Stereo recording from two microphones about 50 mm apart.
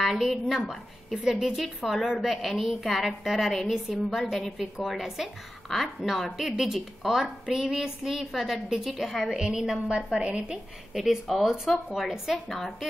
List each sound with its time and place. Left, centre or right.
0.0 s a woman's voice: centre
4.2 s a woman's voice: centre
11.0 s a woman's voice: centre
12.4 s a woman's voice: centre